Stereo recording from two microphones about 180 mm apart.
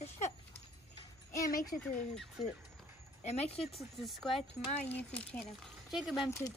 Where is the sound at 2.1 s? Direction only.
Centre (ahead or behind).